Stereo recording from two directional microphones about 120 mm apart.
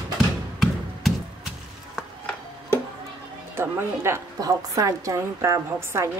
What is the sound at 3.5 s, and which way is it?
A woman's voice, 20° right (ahead or behind).